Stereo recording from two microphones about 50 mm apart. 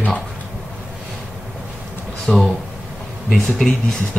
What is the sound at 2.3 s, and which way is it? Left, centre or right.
Speech, left.